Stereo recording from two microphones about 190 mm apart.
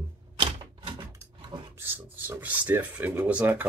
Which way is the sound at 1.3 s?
25° right (ahead or behind).